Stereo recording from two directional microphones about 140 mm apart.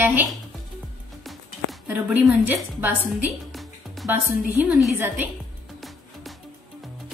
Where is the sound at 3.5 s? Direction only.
Centre (ahead or behind).